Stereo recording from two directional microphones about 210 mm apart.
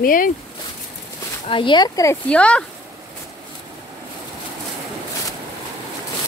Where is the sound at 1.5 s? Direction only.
25° left (ahead or behind); by 2.6 s 5° left (ahead or behind).